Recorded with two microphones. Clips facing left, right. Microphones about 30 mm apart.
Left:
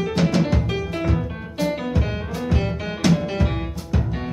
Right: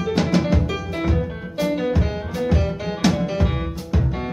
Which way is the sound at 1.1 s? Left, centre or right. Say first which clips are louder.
Right 1 dB; centre.